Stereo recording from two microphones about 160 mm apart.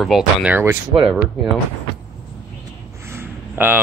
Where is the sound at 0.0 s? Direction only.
5° right (ahead or behind).